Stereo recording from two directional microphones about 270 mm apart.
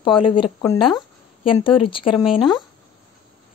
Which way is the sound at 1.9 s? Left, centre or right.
Centre.